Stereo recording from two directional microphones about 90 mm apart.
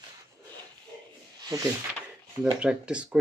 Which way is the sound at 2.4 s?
10° right (ahead or behind).